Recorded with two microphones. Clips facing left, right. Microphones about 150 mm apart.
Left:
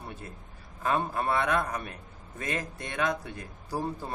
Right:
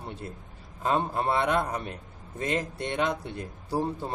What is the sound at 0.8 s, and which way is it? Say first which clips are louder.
Speech: right 2 dB; 25° right (ahead or behind).